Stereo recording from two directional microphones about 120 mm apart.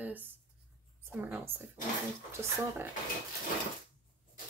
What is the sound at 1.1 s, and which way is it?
Speech, 15° right (ahead or behind).